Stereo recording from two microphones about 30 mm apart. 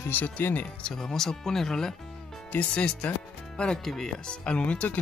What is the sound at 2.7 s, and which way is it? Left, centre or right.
Speech, left.